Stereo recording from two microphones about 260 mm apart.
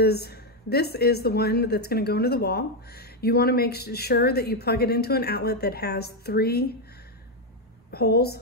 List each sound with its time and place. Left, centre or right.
0.0 s speech: left
7.9 s speech: left